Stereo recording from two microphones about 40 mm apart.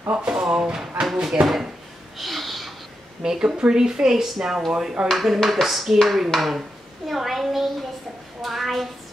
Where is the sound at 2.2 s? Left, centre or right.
Centre.